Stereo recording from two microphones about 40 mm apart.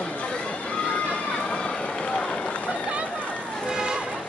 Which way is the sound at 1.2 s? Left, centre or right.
Left.